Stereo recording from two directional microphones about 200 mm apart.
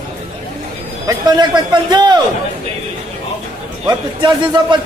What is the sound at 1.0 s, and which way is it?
Speech, 20° right (ahead or behind).